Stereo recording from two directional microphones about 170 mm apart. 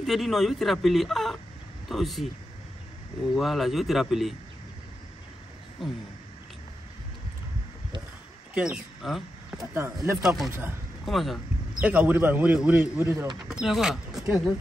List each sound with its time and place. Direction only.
0.0 s speech: centre (ahead or behind)
3.3 s speech: centre (ahead or behind)
5.8 s speech: centre (ahead or behind)
8.5 s speech: 5° right (ahead or behind)
9.6 s a man's voice: 15° right (ahead or behind)
10.2 s a man's voice: centre (ahead or behind)
13.5 s speech: 5° right (ahead or behind)